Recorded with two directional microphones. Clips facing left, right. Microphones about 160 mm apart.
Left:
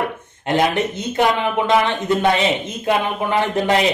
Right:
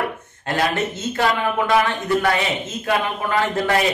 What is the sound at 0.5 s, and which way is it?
Speech, 20° left (ahead or behind).